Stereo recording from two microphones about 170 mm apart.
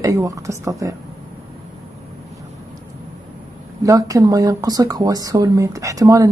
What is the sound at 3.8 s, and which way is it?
Speech, 20° right (ahead or behind).